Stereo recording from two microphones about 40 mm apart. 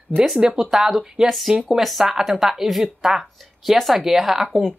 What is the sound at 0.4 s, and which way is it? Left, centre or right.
Speech, centre.